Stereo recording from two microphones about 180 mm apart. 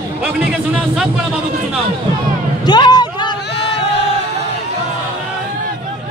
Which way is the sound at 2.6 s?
25° left (ahead or behind).